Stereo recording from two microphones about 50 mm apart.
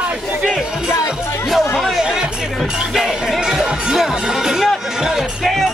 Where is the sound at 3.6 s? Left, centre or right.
Centre.